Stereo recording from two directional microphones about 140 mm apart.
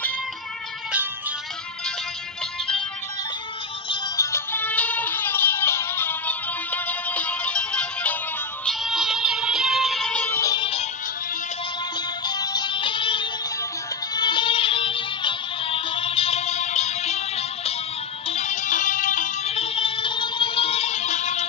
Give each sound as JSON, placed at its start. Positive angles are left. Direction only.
{"t": 3.9, "sound": "music", "side_deg": 20}
{"t": 8.6, "sound": "music", "side_deg": 0}
{"t": 10.5, "sound": "music", "side_deg": 40}
{"t": 12.3, "sound": "music", "side_deg": 30}